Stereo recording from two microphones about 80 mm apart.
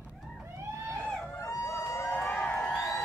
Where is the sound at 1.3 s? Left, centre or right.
Left.